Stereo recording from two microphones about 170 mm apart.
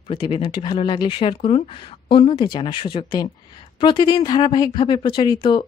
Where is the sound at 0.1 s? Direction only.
30° left (ahead or behind).